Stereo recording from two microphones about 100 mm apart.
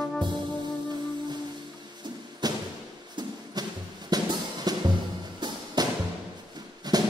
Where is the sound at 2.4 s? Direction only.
40° right (ahead or behind).